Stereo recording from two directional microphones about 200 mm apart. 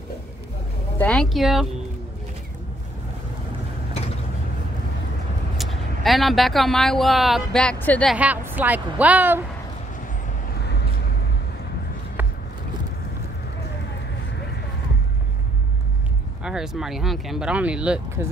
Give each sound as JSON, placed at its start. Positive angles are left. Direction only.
{"t": 0.9, "sound": "speech", "side_deg": 5}
{"t": 5.6, "sound": "speech", "side_deg": 0}
{"t": 10.6, "sound": "vehicle", "side_deg": 55}
{"t": 16.4, "sound": "speech", "side_deg": -5}